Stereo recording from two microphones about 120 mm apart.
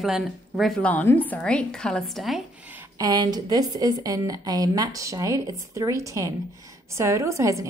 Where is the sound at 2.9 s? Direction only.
30° right (ahead or behind).